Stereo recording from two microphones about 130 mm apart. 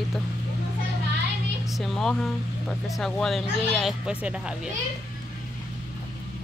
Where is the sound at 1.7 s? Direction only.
Centre (ahead or behind).